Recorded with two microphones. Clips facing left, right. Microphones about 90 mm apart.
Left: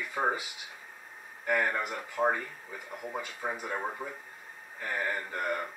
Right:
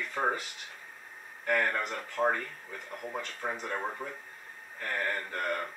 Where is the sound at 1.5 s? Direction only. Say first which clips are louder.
Even; 10° left (ahead or behind).